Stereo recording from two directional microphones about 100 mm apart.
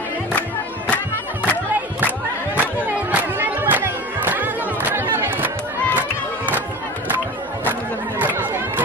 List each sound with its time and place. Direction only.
0.3 s music: 15° left (ahead or behind)
3.1 s music: 20° right (ahead or behind)
5.9 s crowd: 20° right (ahead or behind)
8.2 s chatter: 20° right (ahead or behind)